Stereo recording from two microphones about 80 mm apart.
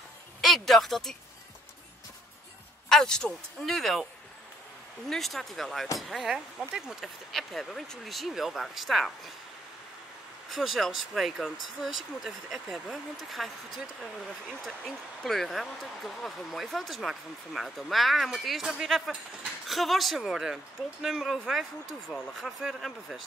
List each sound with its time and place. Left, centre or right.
0.4 s speech: centre
2.9 s speech: centre
10.5 s speech: centre
15.2 s speech: centre